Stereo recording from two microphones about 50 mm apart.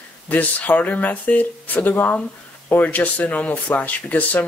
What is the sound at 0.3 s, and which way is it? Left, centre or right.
Speech, left.